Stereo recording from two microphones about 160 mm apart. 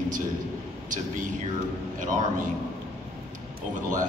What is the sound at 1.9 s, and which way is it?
Speech, 55° right (ahead or behind).